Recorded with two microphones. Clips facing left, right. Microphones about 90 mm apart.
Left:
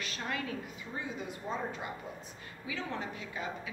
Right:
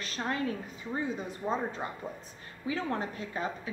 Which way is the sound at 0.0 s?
35° right (ahead or behind).